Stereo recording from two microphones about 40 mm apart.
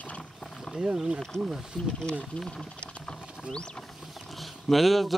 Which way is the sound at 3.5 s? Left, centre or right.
Left.